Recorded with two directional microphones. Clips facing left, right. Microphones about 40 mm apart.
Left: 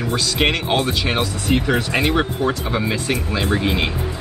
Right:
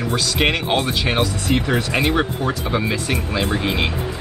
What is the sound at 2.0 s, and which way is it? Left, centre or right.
Speech, centre.